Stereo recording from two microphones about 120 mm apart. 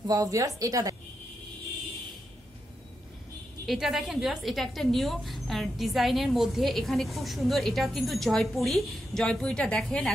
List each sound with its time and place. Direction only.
0.0 s speech: 30° right (ahead or behind)
3.6 s a woman's voice: centre (ahead or behind)